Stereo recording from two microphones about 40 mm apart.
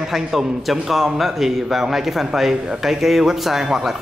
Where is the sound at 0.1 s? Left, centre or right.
Centre.